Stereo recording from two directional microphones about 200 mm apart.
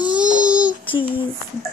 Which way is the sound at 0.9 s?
25° left (ahead or behind).